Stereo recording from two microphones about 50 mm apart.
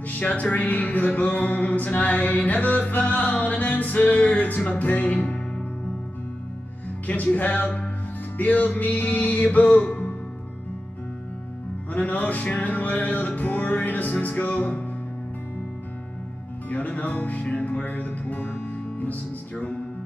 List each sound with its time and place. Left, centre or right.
0.1 s music: left
7.1 s music: left
11.9 s music: left
16.6 s music: left